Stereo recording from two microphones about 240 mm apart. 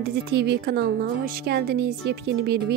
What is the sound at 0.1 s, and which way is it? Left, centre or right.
A woman's voice, right.